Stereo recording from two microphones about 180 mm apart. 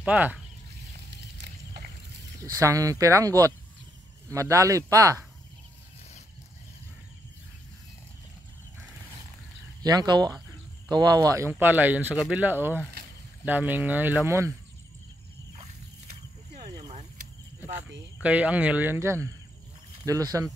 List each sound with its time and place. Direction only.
0.0 s speech: 10° right (ahead or behind)
1.4 s a sound: 60° right (ahead or behind)
2.5 s speech: 20° right (ahead or behind)
9.8 s speech: 25° right (ahead or behind)
17.7 s speech: 5° right (ahead or behind)